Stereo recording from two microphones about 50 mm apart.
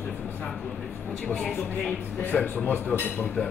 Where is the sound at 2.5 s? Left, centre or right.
Left.